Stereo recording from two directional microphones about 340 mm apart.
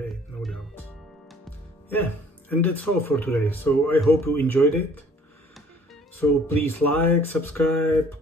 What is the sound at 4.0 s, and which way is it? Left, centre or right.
Music, centre.